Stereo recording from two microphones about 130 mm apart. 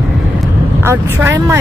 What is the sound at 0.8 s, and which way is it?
Speech, 15° right (ahead or behind).